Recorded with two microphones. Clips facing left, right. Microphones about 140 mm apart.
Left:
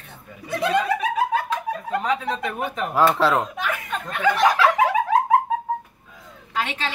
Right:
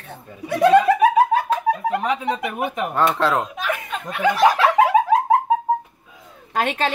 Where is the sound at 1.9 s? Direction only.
15° right (ahead or behind).